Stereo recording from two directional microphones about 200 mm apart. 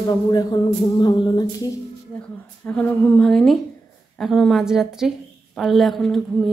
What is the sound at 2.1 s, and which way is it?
A woman's voice, 5° left (ahead or behind).